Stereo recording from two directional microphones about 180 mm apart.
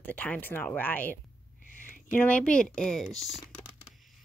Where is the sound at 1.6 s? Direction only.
45° left (ahead or behind).